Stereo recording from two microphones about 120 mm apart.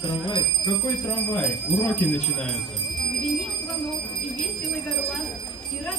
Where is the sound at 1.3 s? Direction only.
20° left (ahead or behind).